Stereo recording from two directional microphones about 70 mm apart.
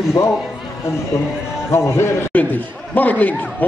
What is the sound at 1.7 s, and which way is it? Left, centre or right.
Speech, left.